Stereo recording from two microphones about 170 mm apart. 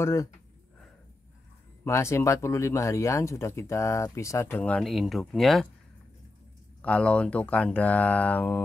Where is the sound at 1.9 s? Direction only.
15° left (ahead or behind).